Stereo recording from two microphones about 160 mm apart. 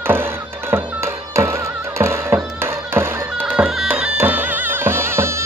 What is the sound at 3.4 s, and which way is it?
Music, 5° right (ahead or behind).